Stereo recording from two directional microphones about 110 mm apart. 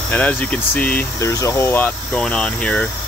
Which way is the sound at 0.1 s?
15° left (ahead or behind).